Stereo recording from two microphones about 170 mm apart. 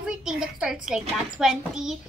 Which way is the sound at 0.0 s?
5° right (ahead or behind).